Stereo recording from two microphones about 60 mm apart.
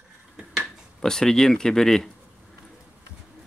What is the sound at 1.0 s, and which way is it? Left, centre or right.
Speech, centre.